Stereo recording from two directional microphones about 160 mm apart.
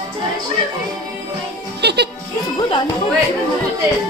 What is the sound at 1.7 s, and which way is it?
Music, 90° right.